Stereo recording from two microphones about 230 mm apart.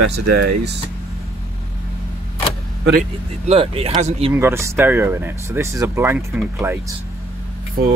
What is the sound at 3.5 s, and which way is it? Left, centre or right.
Speech, right.